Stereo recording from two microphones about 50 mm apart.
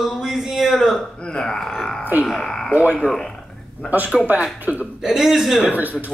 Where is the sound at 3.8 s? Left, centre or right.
Right.